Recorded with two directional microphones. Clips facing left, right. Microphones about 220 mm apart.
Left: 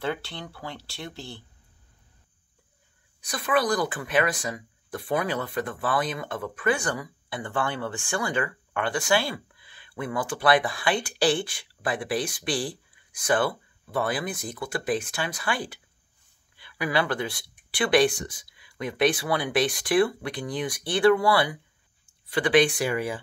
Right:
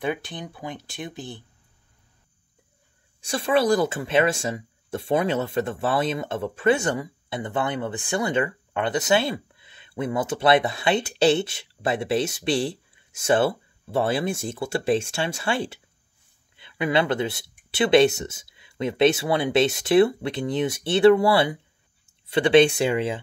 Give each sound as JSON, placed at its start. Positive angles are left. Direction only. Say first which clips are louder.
{"t": 0.0, "sound": "speech", "louder": "right 3 dB", "side_deg": -15}
{"t": 3.2, "sound": "speech", "louder": "right 4 dB", "side_deg": -25}